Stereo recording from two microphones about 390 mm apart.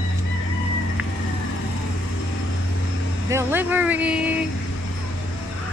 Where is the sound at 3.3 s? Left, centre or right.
Centre.